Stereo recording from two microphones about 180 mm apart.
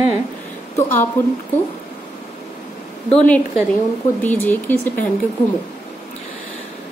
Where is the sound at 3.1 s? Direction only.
5° left (ahead or behind).